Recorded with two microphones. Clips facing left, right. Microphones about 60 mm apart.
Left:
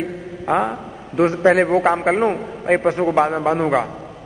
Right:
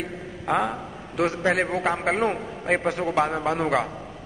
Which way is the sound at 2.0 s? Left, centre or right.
Centre.